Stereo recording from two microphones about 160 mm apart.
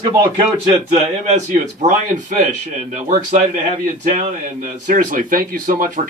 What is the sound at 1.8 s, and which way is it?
A man's voice, 50° right (ahead or behind).